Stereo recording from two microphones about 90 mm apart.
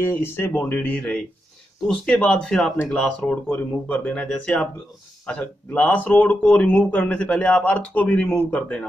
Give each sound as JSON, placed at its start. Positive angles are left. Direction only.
{"t": 0.0, "sound": "speech", "side_deg": 25}